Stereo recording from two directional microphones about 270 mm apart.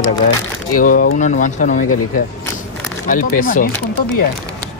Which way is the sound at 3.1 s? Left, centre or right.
Left.